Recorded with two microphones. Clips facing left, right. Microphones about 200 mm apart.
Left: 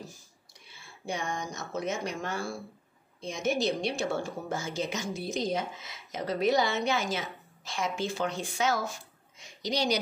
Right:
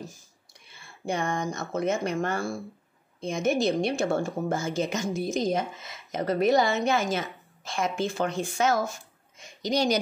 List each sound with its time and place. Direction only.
1.0 s a woman's voice: 55° right (ahead or behind)